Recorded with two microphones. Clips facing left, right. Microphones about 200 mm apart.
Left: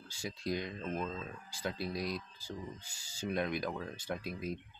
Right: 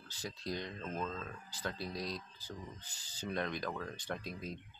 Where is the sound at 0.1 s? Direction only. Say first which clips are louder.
Left 4 dB; 10° left (ahead or behind).